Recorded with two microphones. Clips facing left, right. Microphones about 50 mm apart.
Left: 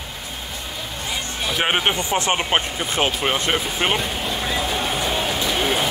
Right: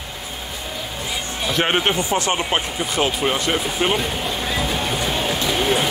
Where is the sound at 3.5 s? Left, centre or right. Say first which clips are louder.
Right 1 dB; centre.